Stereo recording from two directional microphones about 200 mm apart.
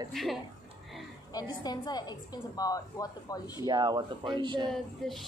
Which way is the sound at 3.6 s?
20° right (ahead or behind).